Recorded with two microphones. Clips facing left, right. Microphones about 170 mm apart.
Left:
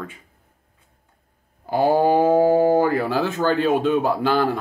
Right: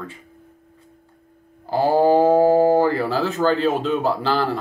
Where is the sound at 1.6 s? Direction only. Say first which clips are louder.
Right 1 dB; 15° left (ahead or behind).